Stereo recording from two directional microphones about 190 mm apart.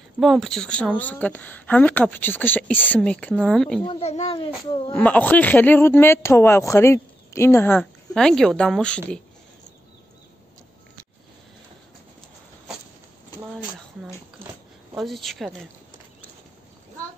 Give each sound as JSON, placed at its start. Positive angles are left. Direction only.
{"t": 0.2, "sound": "speech", "side_deg": 0}
{"t": 3.8, "sound": "a child's voice", "side_deg": 30}
{"t": 4.9, "sound": "speech", "side_deg": 10}
{"t": 15.0, "sound": "a woman's voice", "side_deg": 0}